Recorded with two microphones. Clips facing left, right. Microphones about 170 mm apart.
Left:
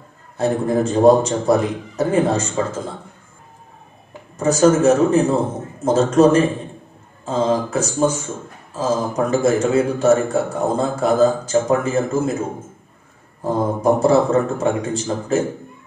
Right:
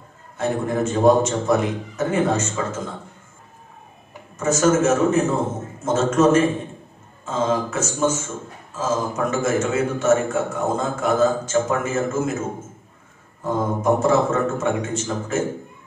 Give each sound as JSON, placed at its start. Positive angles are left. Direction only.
{"t": 0.4, "sound": "a man's voice", "side_deg": 35}
{"t": 4.4, "sound": "a man's voice", "side_deg": 35}